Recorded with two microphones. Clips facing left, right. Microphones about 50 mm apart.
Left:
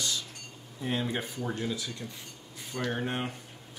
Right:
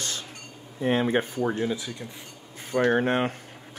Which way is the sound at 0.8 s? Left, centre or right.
Right.